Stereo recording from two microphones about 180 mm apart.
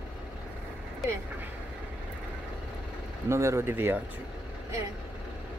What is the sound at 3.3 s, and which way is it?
Speech, 15° right (ahead or behind).